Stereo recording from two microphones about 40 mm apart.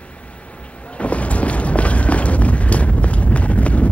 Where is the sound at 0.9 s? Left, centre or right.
Left.